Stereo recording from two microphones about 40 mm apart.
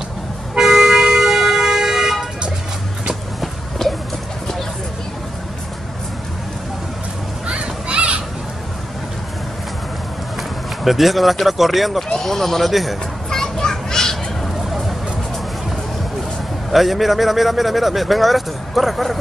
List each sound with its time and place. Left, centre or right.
0.6 s vehicle: centre
3.8 s a sound: centre
7.4 s a sound: right
10.8 s speech: centre
12.1 s speech: centre
13.3 s children playing: centre
16.7 s speech: centre